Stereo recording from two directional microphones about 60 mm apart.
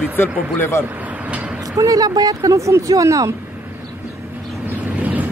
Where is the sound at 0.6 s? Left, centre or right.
Left.